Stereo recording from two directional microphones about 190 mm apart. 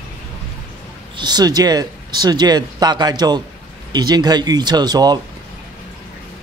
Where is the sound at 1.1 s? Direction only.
20° right (ahead or behind).